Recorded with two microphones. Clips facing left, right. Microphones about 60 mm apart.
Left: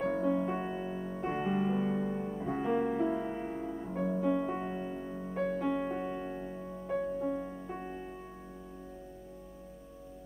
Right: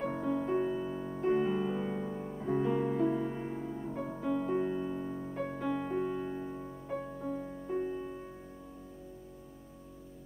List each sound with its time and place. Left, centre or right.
0.0 s music: centre
0.5 s music: centre
1.9 s music: centre
7.2 s music: left